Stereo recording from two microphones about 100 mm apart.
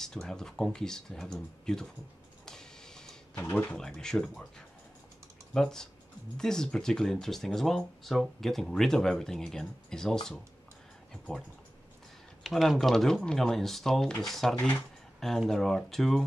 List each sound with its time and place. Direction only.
0.0 s speech: 5° left (ahead or behind)
2.4 s vehicle: 5° left (ahead or behind)
3.3 s speech: 15° left (ahead or behind)
3.7 s speech: 5° left (ahead or behind)
12.4 s speech: centre (ahead or behind)